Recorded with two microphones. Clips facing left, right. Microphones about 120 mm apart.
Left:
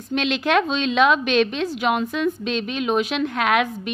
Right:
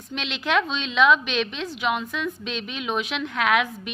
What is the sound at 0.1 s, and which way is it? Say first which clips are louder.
A woman's voice: left 5 dB; 45° left (ahead or behind).